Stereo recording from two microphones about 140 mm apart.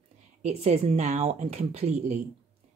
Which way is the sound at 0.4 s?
50° right (ahead or behind).